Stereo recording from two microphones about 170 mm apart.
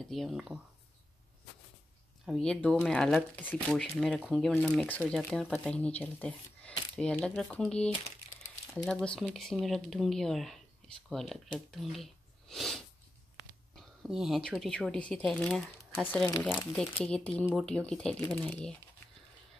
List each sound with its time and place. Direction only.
0.1 s speech: centre (ahead or behind)
2.2 s speech: centre (ahead or behind)